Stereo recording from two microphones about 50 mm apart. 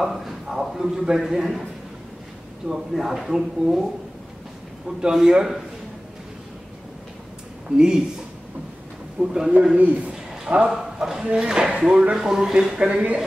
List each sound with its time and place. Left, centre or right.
0.0 s a man's voice: centre
2.7 s speech: centre
4.8 s speech: centre
7.7 s speech: centre
9.2 s speech: centre
9.8 s speech: right
10.1 s a sound: centre
11.0 s speech: centre